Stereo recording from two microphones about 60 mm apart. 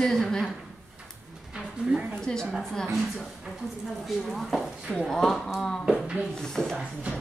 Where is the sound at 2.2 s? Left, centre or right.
Centre.